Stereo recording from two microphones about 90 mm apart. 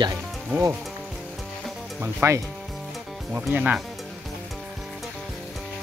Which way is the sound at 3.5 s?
15° right (ahead or behind).